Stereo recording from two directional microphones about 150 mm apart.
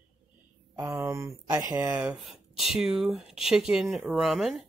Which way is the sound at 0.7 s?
20° right (ahead or behind).